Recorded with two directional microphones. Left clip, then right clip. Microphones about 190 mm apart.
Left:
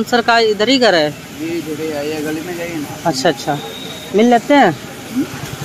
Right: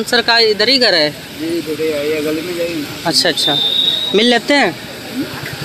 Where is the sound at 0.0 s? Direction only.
15° left (ahead or behind).